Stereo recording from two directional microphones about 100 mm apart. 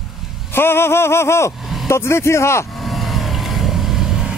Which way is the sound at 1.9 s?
25° left (ahead or behind).